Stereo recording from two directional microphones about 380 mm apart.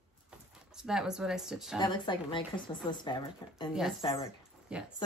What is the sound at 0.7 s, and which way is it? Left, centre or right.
Speech, centre.